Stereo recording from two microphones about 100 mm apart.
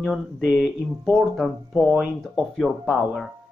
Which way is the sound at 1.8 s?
10° right (ahead or behind).